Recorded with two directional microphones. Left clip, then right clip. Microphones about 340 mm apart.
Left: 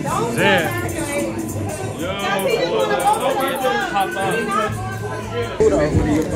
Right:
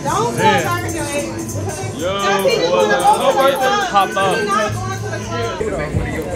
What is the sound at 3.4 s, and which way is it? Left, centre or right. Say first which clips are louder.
Speech: right 5 dB; centre.